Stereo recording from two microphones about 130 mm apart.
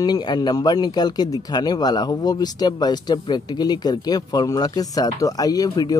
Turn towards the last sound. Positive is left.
turn(degrees=30)  # may be behind; listen again after turning